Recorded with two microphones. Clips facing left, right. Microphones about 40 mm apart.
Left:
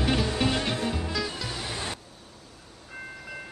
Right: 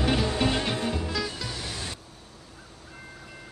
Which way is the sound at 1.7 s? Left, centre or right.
Left.